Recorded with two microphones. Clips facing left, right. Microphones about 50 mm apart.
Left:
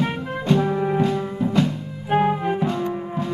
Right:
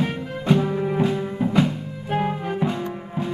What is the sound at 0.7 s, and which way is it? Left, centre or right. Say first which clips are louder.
Music: left 2 dB; centre.